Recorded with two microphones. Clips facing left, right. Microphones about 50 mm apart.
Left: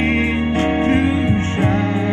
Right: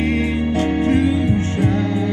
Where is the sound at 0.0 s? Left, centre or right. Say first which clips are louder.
Left 2 dB; left.